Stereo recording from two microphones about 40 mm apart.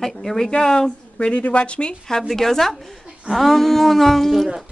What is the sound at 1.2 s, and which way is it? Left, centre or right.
Speech, left.